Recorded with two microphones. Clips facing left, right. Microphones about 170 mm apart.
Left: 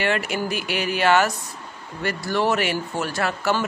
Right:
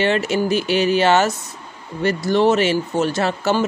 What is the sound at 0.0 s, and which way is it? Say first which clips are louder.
Speech: right 5 dB; 25° right (ahead or behind).